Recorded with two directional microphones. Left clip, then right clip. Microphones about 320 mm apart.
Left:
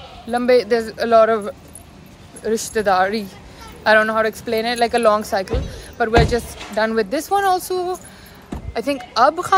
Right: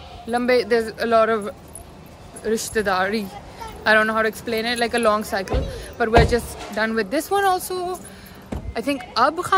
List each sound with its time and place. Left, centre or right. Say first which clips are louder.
0.3 s speech: left 3 dB; centre